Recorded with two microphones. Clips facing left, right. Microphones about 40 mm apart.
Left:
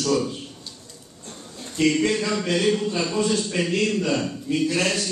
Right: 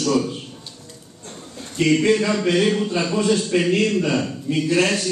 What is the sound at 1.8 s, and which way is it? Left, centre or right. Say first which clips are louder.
Speech: right 4 dB; centre.